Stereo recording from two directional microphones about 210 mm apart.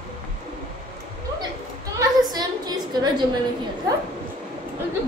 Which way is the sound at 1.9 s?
20° right (ahead or behind).